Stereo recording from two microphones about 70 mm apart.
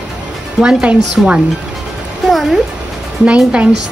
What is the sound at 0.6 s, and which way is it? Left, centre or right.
Speech, centre.